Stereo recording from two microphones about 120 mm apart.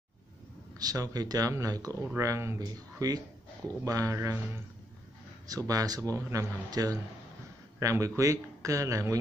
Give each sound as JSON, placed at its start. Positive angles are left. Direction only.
{"t": 0.7, "sound": "speech", "side_deg": -30}
{"t": 5.5, "sound": "speech", "side_deg": -30}